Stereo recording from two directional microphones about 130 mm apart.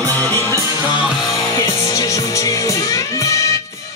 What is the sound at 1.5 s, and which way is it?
Music, 30° left (ahead or behind).